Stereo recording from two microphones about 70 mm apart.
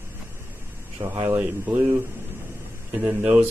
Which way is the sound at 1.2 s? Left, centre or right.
Right.